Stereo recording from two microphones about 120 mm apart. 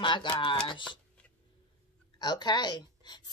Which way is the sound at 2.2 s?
35° left (ahead or behind).